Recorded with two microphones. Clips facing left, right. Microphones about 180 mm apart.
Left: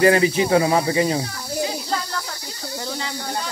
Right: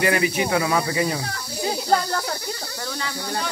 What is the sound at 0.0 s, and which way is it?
Speech, 30° left (ahead or behind).